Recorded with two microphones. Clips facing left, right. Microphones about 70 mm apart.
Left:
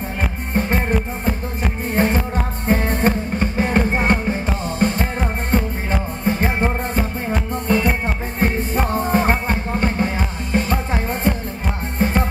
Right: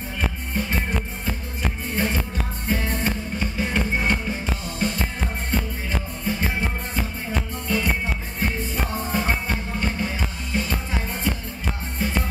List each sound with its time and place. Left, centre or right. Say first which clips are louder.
0.2 s music: left 4 dB; left
2.0 s music: left 8 dB; left